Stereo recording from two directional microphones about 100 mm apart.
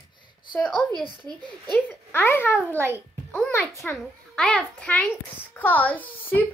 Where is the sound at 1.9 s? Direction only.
20° left (ahead or behind).